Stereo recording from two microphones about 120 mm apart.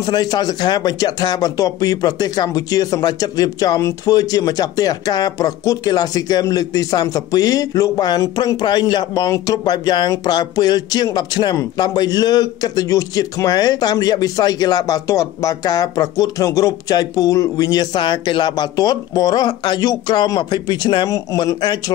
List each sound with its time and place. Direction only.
0.0 s speech: 35° left (ahead or behind)
21.5 s speech: 40° left (ahead or behind)